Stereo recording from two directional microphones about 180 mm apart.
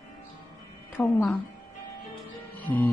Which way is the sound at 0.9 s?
Centre (ahead or behind).